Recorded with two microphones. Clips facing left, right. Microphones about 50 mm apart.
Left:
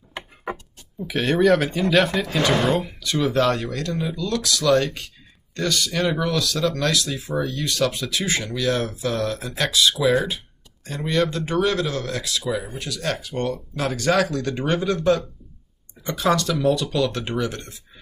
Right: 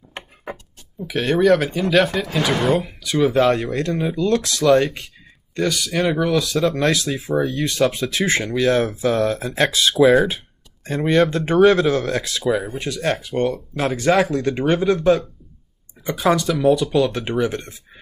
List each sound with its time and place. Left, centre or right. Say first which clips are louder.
0.9 s speech: right 1 dB; centre
3.7 s speech: right 5 dB; right; by 6.3 s centre
6.3 s speech: right 4 dB; right